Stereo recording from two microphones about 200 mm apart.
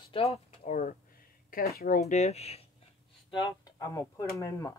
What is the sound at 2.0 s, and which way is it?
Speech, 35° left (ahead or behind).